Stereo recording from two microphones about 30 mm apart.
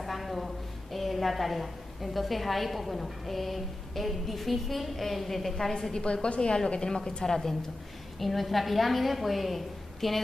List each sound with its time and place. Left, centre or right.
0.0 s a sound: centre
0.9 s a woman's voice: centre
5.6 s a woman's voice: centre
5.9 s a woman's voice: left
7.2 s a woman's voice: centre